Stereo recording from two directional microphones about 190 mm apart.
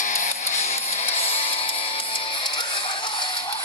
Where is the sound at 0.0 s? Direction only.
40° left (ahead or behind).